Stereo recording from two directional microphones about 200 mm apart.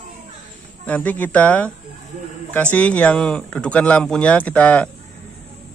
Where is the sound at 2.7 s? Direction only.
5° left (ahead or behind).